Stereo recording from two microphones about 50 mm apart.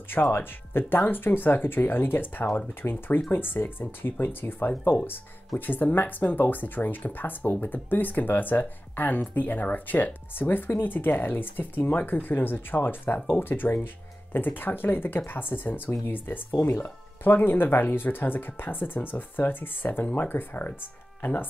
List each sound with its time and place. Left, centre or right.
0.1 s speech: left